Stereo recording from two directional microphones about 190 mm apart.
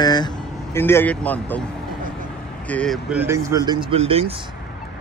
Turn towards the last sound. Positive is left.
turn(degrees=-30)  # may be behind; listen again after turning